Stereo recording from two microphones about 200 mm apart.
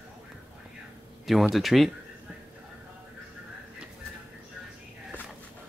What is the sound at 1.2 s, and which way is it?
Speech, centre (ahead or behind).